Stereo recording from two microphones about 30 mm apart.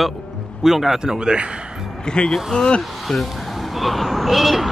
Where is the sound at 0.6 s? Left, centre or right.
Centre.